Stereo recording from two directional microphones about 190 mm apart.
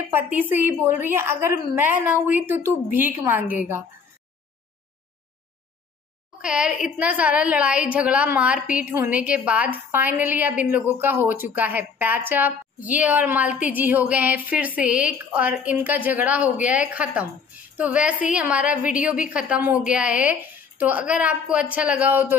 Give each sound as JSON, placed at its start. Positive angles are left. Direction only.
{"t": 0.3, "sound": "a woman's voice", "side_deg": -10}
{"t": 6.4, "sound": "a woman's voice", "side_deg": -5}